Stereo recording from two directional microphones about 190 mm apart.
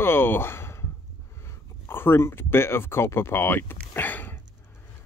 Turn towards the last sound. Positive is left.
turn(degrees=10)  # may be behind; listen again after turning